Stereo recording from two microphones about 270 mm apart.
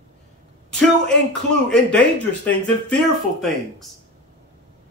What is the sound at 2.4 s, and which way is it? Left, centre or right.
A man's voice, centre.